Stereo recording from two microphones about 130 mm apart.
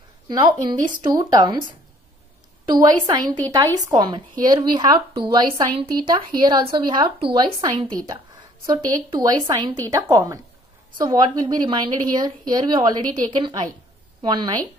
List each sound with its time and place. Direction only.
0.3 s a woman's voice: 35° right (ahead or behind)
2.7 s a woman's voice: 30° right (ahead or behind)